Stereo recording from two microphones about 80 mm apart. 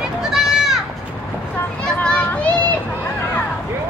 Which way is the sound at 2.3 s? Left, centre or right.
Left.